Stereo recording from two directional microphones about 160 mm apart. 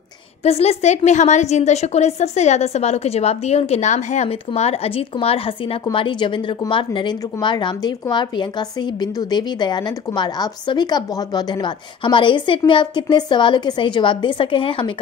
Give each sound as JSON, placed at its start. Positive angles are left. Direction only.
{"t": 0.4, "sound": "a woman's voice", "side_deg": 40}